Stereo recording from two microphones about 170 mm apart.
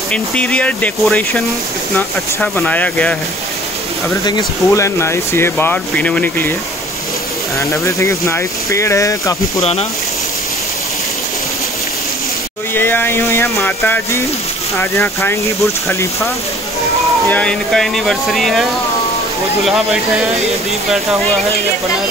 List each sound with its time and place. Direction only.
0.1 s speech: 5° left (ahead or behind)
4.2 s speech: 20° left (ahead or behind)
7.8 s speech: 15° left (ahead or behind)
9.6 s speech: 35° left (ahead or behind)
12.7 s speech: 10° left (ahead or behind)
17.3 s speech: 5° left (ahead or behind)